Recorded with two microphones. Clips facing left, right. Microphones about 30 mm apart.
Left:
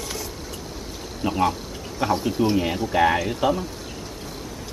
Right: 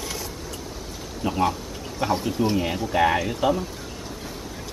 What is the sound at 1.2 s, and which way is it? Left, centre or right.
Speech, centre.